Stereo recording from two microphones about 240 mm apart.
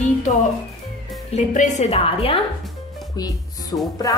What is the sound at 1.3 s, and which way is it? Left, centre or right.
A woman's voice, left.